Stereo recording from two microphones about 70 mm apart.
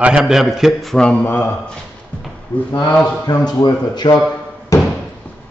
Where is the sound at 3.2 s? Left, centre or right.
Left.